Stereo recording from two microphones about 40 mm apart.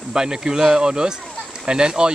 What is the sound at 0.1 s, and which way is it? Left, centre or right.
Speech, centre.